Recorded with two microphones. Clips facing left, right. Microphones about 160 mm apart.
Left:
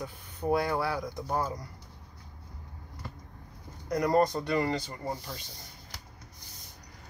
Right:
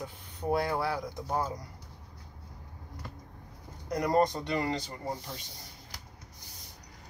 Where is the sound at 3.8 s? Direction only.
20° right (ahead or behind).